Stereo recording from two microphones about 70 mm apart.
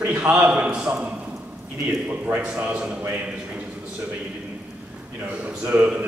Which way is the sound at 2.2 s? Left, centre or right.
Right.